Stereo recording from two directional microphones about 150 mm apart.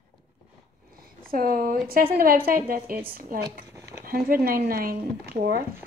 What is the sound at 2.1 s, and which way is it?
Speech, 75° right (ahead or behind).